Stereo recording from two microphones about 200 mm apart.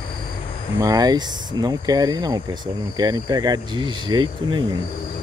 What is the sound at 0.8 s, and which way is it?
Speech, 20° right (ahead or behind).